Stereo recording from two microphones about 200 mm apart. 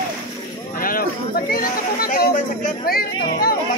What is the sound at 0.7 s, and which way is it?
Jingle bell, 45° left (ahead or behind).